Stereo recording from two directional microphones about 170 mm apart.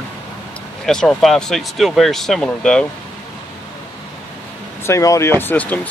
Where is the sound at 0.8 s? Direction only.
Centre (ahead or behind).